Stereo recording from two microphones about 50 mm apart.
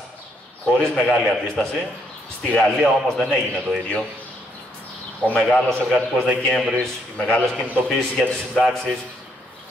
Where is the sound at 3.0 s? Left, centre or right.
Centre.